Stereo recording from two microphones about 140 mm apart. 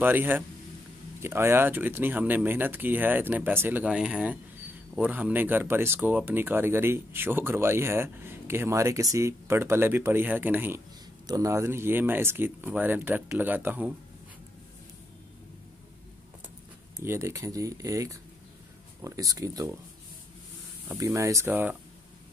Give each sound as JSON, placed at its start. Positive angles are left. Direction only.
{"t": 0.0, "sound": "speech", "side_deg": -15}
{"t": 17.0, "sound": "speech", "side_deg": -20}
{"t": 21.0, "sound": "speech", "side_deg": -20}